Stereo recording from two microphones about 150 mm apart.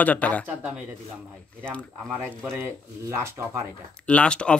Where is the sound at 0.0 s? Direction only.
10° left (ahead or behind).